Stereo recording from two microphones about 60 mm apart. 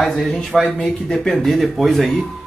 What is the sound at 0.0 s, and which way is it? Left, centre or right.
Speech, centre.